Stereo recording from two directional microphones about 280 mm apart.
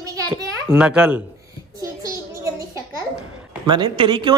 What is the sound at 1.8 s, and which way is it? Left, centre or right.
Child singing, centre.